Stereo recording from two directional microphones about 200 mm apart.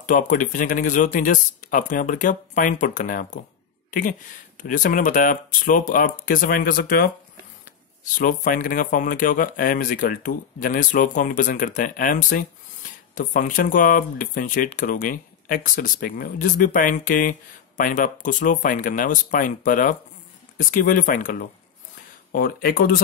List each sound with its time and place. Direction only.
0.0 s speech: 40° left (ahead or behind)
4.6 s speech: 40° left (ahead or behind)